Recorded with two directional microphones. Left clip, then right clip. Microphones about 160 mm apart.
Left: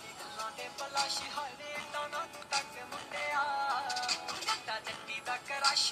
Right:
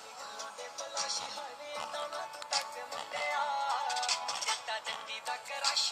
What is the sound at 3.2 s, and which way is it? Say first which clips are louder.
Music: even; 30° right (ahead or behind).